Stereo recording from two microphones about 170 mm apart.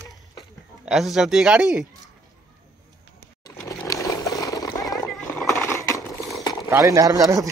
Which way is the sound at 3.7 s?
20° left (ahead or behind).